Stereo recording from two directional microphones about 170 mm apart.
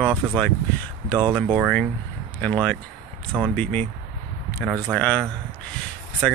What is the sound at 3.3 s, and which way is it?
Speech, 10° right (ahead or behind).